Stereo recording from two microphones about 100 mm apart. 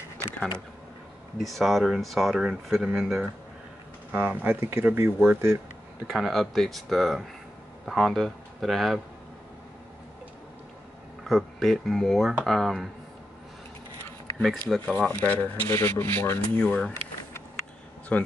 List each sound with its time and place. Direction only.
1.4 s speech: centre (ahead or behind); by 5.6 s 20° right (ahead or behind)
6.0 s speech: centre (ahead or behind)
11.2 s speech: centre (ahead or behind)
14.7 s speech: 10° left (ahead or behind)
18.1 s speech: 15° left (ahead or behind)